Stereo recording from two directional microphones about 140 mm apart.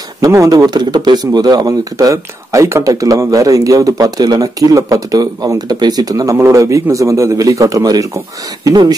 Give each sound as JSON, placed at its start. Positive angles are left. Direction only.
{"t": 0.2, "sound": "speech", "side_deg": -25}